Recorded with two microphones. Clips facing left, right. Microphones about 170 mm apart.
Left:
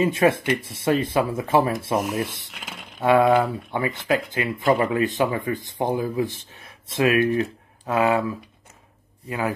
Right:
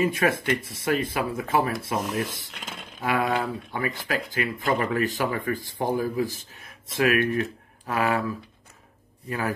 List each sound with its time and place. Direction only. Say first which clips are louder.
0.0 s speech: left 4 dB; 25° left (ahead or behind)
2.6 s speech: left 2 dB; 5° left (ahead or behind)
3.0 s speech: left 8 dB; 25° left (ahead or behind)